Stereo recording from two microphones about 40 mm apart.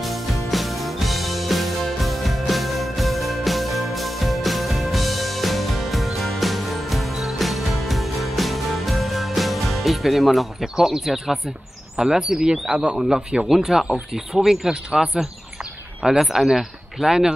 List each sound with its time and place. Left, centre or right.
0.0 s music: centre
11.0 s speech: centre
12.0 s speech: centre
16.0 s speech: centre